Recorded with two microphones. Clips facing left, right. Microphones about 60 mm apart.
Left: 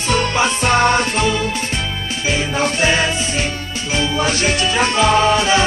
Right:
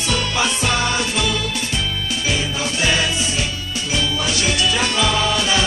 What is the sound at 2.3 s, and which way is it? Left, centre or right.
Music, left.